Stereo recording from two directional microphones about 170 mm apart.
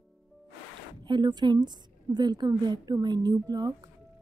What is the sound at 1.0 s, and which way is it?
A woman's voice, 25° right (ahead or behind).